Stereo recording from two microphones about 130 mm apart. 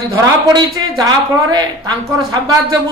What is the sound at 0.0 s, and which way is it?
Speech, 30° right (ahead or behind).